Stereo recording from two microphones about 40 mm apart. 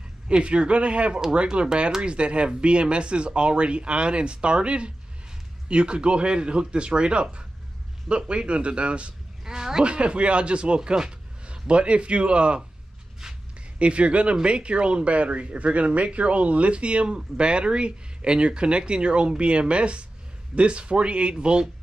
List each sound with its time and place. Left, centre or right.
0.3 s speech: right
9.4 s a sound: centre
9.8 s speech: right
13.7 s speech: right